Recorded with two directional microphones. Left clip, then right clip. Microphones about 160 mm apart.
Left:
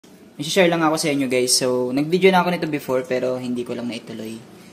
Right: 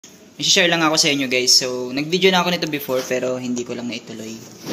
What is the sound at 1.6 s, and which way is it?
Speech, 25° left (ahead or behind).